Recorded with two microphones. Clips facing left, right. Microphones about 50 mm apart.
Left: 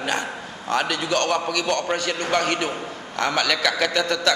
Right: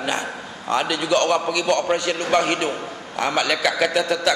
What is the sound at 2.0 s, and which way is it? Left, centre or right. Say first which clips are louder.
A man's voice: right 3 dB; right.